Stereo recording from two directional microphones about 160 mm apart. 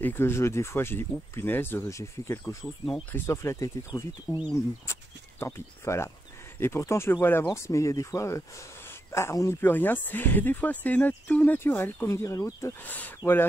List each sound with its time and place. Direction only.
0.0 s speech: 15° left (ahead or behind)